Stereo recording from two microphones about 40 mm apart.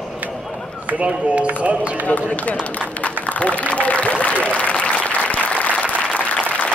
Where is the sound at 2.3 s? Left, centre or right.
Left.